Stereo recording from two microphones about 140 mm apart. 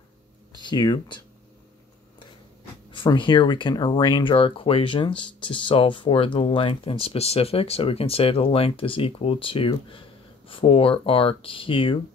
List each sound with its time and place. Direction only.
0.6 s speech: 30° left (ahead or behind)
2.9 s speech: 35° left (ahead or behind)